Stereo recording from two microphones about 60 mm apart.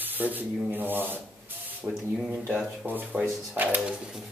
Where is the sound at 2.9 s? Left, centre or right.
Right.